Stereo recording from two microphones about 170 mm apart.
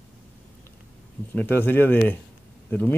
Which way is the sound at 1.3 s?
10° left (ahead or behind).